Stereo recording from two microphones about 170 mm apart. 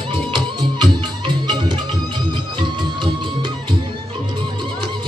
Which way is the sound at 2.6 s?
30° right (ahead or behind).